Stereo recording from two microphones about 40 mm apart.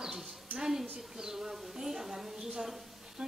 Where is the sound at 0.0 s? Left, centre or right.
Centre.